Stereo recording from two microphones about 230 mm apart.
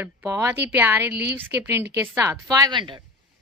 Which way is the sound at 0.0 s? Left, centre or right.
Centre.